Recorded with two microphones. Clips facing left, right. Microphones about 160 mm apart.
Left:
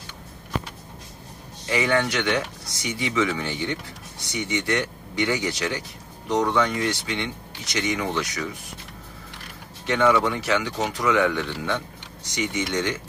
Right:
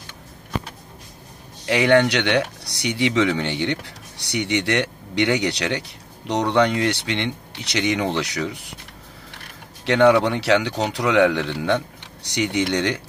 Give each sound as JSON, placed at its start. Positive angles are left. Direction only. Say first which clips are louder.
{"t": 1.7, "sound": "speech", "louder": "right 6 dB", "side_deg": -75}
{"t": 9.8, "sound": "speech", "louder": "right 5 dB", "side_deg": -75}